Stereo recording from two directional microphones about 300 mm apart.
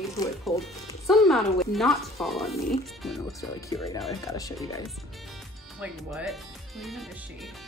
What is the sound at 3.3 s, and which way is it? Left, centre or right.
Speech, centre.